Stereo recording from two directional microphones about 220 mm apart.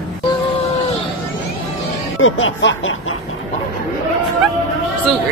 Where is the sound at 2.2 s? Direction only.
65° left (ahead or behind).